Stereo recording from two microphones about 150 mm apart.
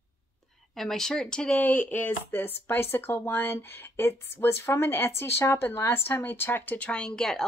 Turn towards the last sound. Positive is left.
turn(degrees=5)  # may be behind; listen again after turning